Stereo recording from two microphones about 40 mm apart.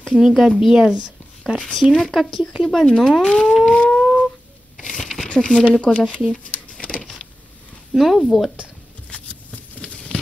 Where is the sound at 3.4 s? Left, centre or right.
Centre.